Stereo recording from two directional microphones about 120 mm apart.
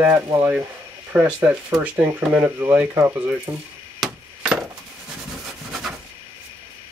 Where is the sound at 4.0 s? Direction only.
5° right (ahead or behind).